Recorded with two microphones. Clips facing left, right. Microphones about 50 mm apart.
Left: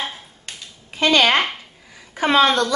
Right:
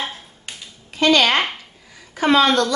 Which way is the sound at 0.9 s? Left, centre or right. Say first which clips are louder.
Even; left.